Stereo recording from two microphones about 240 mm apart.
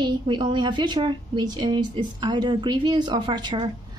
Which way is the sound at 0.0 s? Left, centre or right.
Centre.